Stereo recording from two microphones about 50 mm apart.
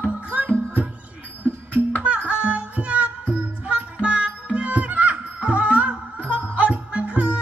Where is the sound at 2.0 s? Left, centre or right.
Right.